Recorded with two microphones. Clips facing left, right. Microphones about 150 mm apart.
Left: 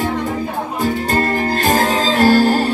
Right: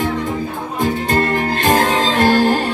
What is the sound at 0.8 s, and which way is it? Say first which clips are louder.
Music: right 1 dB; 40° left (ahead or behind).